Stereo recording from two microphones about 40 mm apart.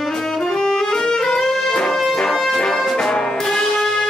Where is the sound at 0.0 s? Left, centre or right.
Centre.